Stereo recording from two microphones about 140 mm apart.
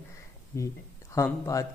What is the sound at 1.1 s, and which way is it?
Speech, 20° left (ahead or behind).